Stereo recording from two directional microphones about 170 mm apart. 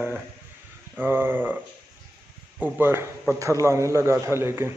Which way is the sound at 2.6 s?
15° right (ahead or behind).